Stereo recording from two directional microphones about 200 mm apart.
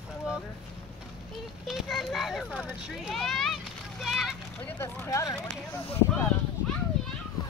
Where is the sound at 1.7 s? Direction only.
Centre (ahead or behind).